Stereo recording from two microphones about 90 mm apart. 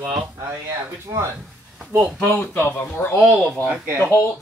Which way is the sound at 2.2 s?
25° left (ahead or behind).